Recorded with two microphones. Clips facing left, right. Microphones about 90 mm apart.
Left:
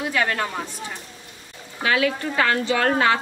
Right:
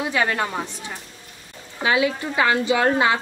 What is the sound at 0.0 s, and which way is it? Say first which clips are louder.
Speech: right 1 dB; 15° right (ahead or behind).